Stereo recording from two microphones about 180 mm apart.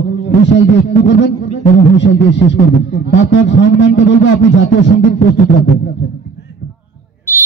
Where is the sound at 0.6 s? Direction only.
80° left.